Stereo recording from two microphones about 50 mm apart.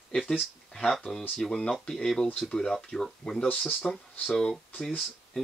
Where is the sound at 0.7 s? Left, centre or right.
Centre.